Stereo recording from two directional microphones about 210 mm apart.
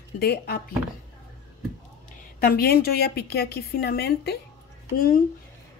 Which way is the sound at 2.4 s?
45° left (ahead or behind).